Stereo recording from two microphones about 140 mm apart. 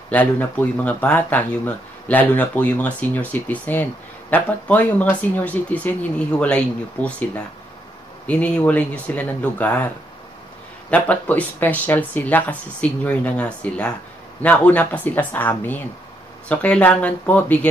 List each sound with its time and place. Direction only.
0.1 s speech: 10° left (ahead or behind)
8.3 s speech: 10° left (ahead or behind)
10.9 s speech: 10° left (ahead or behind)